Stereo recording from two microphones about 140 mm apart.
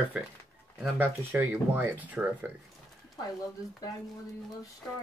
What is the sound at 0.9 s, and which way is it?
Speech, 15° right (ahead or behind).